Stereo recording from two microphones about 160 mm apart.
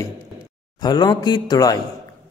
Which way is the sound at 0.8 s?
25° left (ahead or behind).